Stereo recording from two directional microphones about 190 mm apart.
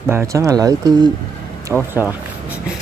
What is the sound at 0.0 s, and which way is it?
Speech, 15° right (ahead or behind).